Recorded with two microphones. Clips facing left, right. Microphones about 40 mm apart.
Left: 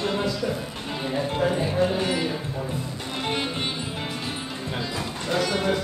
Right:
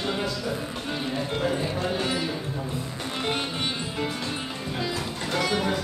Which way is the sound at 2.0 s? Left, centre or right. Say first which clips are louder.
Left 2 dB; left.